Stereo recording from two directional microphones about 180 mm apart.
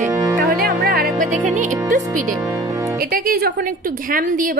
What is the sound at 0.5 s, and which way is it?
Music, 55° right (ahead or behind).